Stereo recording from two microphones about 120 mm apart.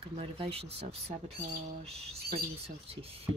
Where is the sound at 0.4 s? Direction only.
55° right (ahead or behind).